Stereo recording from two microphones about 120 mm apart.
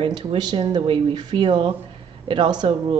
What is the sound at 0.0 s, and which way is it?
Speech, 45° right (ahead or behind).